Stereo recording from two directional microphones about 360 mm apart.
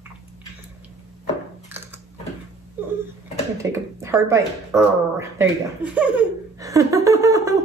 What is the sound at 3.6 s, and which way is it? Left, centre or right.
Speech, centre.